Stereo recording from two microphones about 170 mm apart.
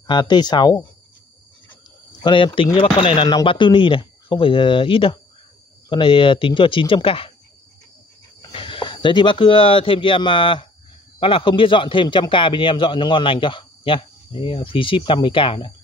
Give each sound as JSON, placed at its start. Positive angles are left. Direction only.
{"t": 0.0, "sound": "a man's voice", "side_deg": 25}
{"t": 2.2, "sound": "a man's voice", "side_deg": 30}
{"t": 8.5, "sound": "a man's voice", "side_deg": 30}